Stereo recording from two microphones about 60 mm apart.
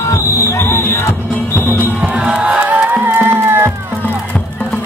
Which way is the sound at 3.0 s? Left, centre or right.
Right.